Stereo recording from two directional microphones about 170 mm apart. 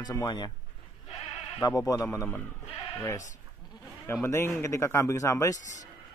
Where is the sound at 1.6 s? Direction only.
20° left (ahead or behind).